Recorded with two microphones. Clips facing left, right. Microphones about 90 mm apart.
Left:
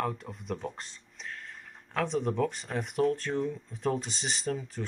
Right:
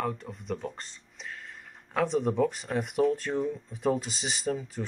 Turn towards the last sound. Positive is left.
turn(degrees=-5)  # may be behind; listen again after turning